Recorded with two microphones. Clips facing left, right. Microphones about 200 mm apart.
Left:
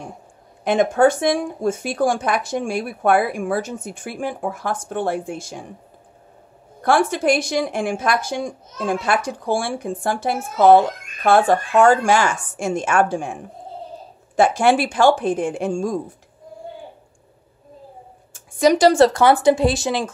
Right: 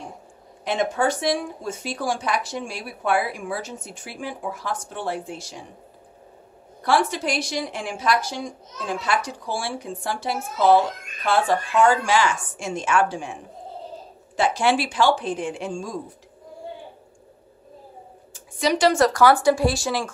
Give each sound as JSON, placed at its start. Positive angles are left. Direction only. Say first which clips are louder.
{"t": 0.7, "sound": "speech", "louder": "left 7 dB", "side_deg": 50}
{"t": 6.8, "sound": "speech", "louder": "left 4 dB", "side_deg": 50}
{"t": 18.3, "sound": "speech", "louder": "left 7 dB", "side_deg": 45}